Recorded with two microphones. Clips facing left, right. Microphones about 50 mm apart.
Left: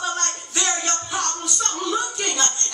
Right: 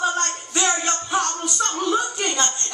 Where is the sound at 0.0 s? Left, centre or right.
Centre.